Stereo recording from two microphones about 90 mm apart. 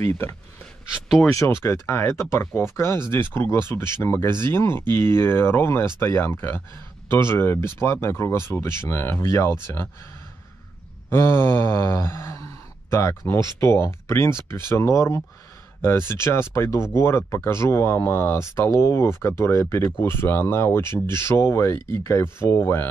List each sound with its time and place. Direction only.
0.0 s speech: 30° left (ahead or behind)
1.0 s speech: 5° right (ahead or behind)
1.3 s speech: 30° left (ahead or behind)
11.1 s a sound: 25° left (ahead or behind)
13.3 s speech: 30° left (ahead or behind)